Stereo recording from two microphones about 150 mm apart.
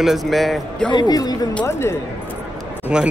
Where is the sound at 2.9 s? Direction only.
5° right (ahead or behind).